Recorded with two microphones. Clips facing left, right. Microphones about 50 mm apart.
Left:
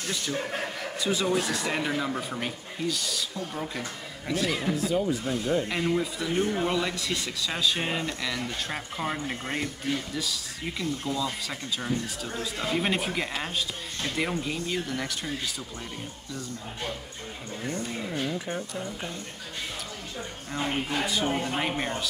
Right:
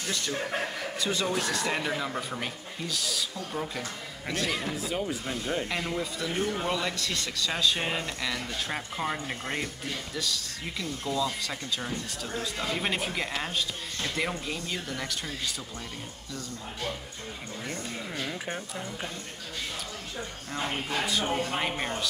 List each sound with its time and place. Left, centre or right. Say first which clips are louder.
0.1 s speech: even; centre
4.8 s speech: left 7 dB; centre
5.7 s speech: left 4 dB; centre
20.5 s speech: left 2 dB; centre